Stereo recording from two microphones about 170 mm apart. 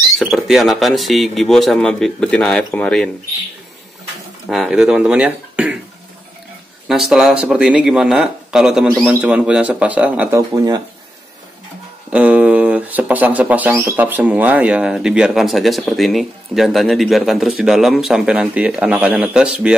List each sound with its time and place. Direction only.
0.2 s speech: centre (ahead or behind)
4.5 s speech: centre (ahead or behind)
6.9 s speech: 5° right (ahead or behind)
10.5 s speech: 20° right (ahead or behind)
12.1 s speech: 5° right (ahead or behind)